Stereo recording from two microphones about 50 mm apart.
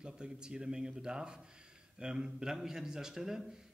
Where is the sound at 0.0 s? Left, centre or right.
Centre.